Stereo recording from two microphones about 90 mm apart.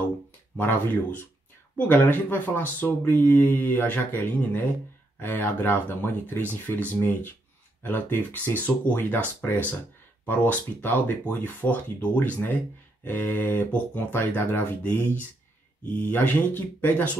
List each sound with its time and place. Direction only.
0.6 s speech: 20° left (ahead or behind)
10.2 s speech: 20° left (ahead or behind)